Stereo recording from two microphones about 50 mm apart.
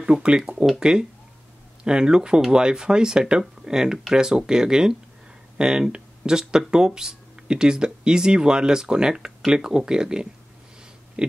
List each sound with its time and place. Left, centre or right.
0.0 s speech: centre
11.2 s oink: centre